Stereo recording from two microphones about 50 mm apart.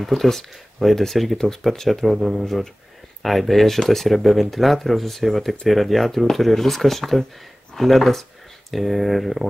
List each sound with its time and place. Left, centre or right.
0.0 s speech: centre
2.1 s speech: centre
2.4 s speech: centre